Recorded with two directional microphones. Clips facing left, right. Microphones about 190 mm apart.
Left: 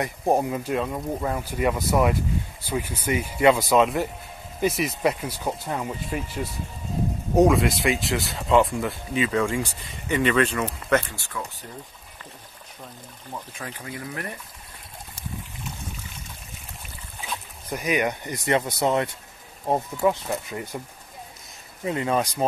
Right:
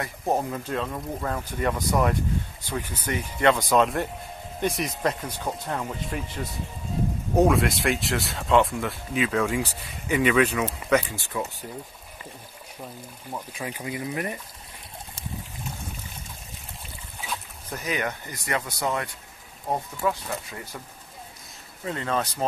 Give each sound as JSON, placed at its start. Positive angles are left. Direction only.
{"t": 0.0, "sound": "speech", "side_deg": 10}
{"t": 13.3, "sound": "speech", "side_deg": -10}
{"t": 17.3, "sound": "speech", "side_deg": 15}
{"t": 21.8, "sound": "speech", "side_deg": 15}